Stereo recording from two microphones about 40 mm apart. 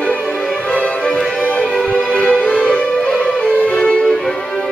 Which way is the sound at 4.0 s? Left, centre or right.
Centre.